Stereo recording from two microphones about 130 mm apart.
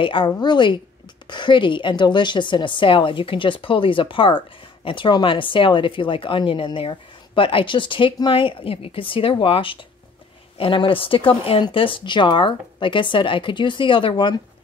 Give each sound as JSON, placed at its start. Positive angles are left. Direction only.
{"t": 0.0, "sound": "speech", "side_deg": 40}